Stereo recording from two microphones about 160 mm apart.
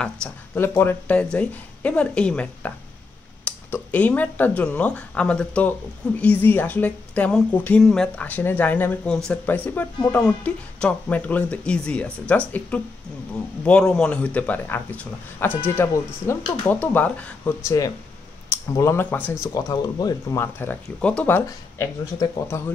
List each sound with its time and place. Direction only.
0.0 s speech: 10° left (ahead or behind)
17.6 s speech: 20° left (ahead or behind)
19.4 s speech: 20° left (ahead or behind)
22.2 s speech: 25° left (ahead or behind)